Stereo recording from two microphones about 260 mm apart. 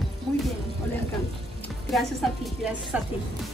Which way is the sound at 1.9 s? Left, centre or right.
Centre.